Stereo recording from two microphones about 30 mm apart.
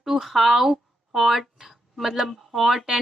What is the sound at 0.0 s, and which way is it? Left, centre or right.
A woman's voice, centre.